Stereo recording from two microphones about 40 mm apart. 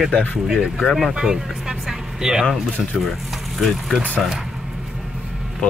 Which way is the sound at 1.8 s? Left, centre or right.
Centre.